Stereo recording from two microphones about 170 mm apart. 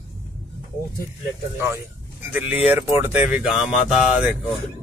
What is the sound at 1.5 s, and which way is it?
Speech, 15° right (ahead or behind).